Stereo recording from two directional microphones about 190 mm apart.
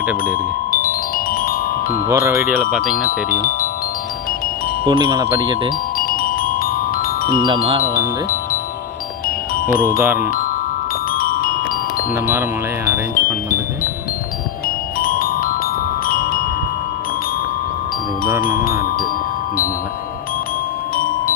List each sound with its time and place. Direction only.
0.2 s speech: 50° left (ahead or behind)
2.0 s marimba: 15° right (ahead or behind)
3.0 s speech: 50° left (ahead or behind)
4.8 s speech: 20° right (ahead or behind)
5.9 s glockenspiel: 50° left (ahead or behind)
7.4 s speech: 30° right (ahead or behind)
9.9 s marimba: 10° right (ahead or behind)
11.1 s marimba: 50° left (ahead or behind)
12.3 s marimba: 15° right (ahead or behind)
15.0 s marimba: 50° left (ahead or behind)
16.1 s music: 50° left (ahead or behind)